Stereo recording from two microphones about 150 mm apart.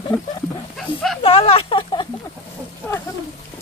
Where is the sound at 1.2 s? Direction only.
40° left (ahead or behind).